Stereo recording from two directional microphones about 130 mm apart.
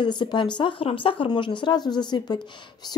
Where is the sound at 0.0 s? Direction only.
35° left (ahead or behind).